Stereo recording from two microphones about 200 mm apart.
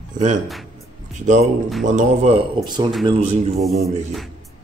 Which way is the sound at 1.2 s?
35° right (ahead or behind).